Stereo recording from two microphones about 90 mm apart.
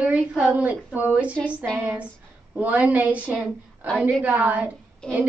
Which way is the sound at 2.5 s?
20° right (ahead or behind).